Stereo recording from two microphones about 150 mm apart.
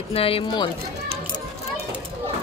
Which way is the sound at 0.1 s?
40° left (ahead or behind).